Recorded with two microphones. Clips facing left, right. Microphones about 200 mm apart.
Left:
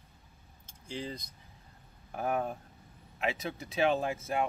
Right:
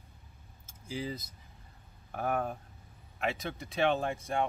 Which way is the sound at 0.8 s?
5° right (ahead or behind).